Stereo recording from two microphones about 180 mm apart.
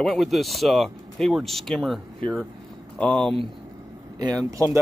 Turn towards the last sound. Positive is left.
turn(degrees=-15)  # may be behind; listen again after turning